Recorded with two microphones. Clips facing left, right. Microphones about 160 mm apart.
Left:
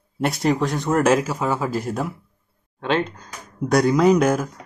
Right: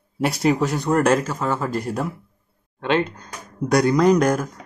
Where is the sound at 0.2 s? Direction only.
Centre (ahead or behind).